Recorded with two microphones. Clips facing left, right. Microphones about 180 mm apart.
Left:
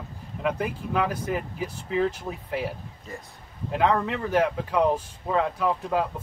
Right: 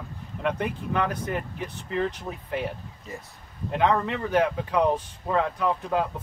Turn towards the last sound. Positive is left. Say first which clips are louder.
# even
turn(degrees=0)  # may be behind; listen again after turning